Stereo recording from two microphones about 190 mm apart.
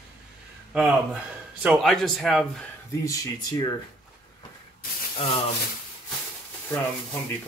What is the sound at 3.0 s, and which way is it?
Speech, 20° left (ahead or behind).